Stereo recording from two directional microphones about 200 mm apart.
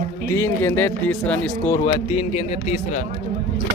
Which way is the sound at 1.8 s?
25° left (ahead or behind).